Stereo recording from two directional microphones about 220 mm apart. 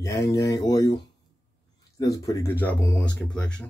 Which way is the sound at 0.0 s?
15° left (ahead or behind).